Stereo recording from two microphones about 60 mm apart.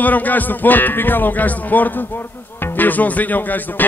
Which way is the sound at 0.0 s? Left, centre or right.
Left.